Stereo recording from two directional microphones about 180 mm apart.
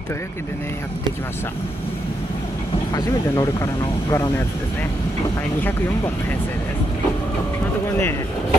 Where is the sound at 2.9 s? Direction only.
20° left (ahead or behind).